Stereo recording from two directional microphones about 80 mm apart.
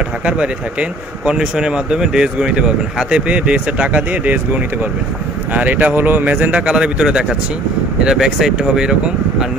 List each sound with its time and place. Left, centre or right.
0.2 s speech: centre